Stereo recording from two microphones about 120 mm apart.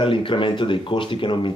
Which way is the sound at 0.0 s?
45° left (ahead or behind).